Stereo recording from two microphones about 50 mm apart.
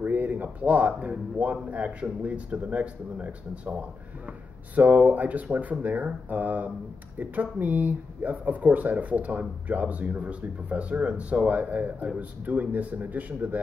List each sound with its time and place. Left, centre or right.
0.0 s speech: right